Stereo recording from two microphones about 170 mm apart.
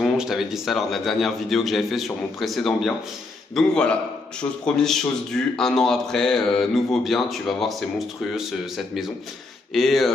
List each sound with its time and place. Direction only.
0.0 s speech: centre (ahead or behind)